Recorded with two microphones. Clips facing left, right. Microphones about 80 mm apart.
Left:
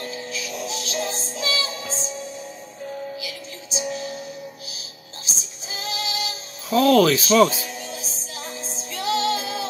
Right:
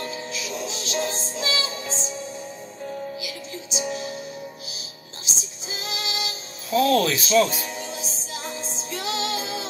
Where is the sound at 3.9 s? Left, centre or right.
Right.